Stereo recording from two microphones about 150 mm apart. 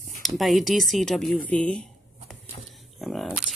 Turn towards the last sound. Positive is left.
turn(degrees=0)  # may be behind; listen again after turning